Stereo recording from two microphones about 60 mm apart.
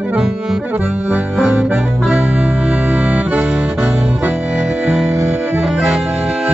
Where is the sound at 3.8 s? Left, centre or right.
Right.